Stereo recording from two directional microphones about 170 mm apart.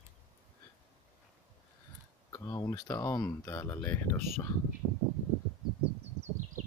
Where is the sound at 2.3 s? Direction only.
20° left (ahead or behind).